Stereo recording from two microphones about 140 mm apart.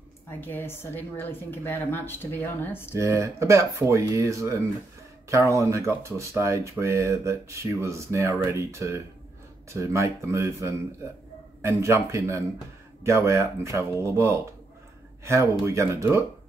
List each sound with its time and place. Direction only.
0.3 s speech: 15° left (ahead or behind)
3.0 s speech: 20° right (ahead or behind)